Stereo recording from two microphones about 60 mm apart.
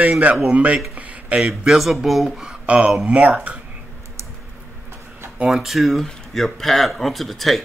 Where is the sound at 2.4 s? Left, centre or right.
Centre.